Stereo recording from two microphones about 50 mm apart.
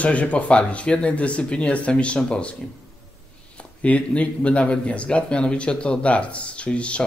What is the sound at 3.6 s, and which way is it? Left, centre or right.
Speech, left.